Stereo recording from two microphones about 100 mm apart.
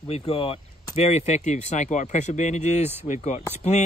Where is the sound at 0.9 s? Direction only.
90° left.